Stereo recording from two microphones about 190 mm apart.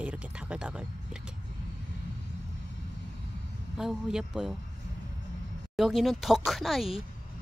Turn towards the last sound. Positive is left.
turn(degrees=0)  # may be behind; listen again after turning